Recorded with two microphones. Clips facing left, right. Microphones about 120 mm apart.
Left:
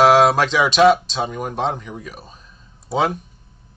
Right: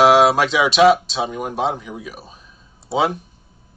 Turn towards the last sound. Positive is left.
turn(degrees=0)  # may be behind; listen again after turning